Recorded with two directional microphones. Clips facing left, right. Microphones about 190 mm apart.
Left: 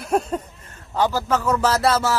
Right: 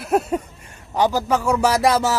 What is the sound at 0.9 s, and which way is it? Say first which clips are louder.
Music: right 2 dB; 15° right (ahead or behind).